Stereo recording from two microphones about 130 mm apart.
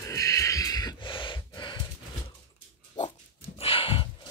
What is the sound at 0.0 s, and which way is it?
Gasp, 25° left (ahead or behind).